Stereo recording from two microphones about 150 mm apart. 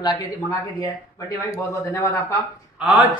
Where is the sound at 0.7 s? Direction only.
25° left (ahead or behind).